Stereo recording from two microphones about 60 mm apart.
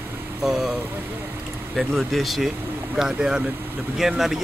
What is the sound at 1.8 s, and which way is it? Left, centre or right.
Speech, centre.